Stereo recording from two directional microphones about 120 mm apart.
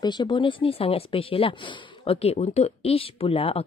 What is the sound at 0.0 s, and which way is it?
Speech, 35° left (ahead or behind).